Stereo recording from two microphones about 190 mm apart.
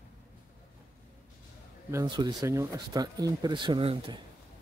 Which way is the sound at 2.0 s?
25° right (ahead or behind).